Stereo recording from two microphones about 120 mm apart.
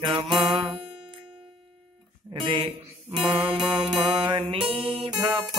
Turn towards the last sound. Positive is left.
turn(degrees=-35)  # may be behind; listen again after turning